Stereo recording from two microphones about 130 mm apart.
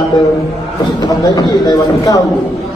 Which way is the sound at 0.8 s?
30° left (ahead or behind).